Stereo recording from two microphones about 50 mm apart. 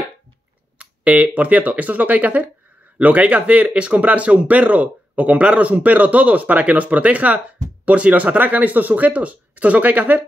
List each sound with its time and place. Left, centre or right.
0.7 s speech: right